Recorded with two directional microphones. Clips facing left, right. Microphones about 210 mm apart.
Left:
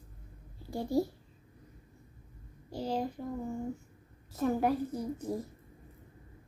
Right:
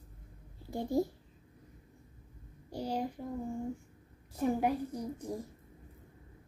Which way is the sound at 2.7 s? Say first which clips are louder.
Left 2 dB; 10° right (ahead or behind).